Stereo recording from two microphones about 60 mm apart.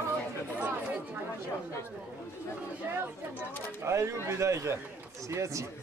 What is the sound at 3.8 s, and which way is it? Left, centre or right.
A man's voice, right.